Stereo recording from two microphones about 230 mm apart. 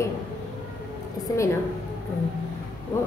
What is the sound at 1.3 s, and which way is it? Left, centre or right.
Speech, centre.